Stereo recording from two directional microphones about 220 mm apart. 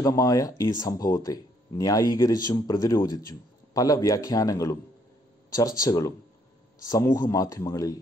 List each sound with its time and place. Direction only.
0.0 s speech: 15° left (ahead or behind)